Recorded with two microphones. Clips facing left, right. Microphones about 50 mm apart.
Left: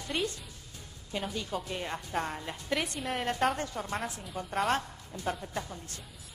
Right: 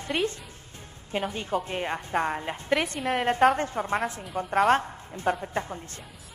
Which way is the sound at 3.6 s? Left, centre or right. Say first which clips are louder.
Right 7 dB; right.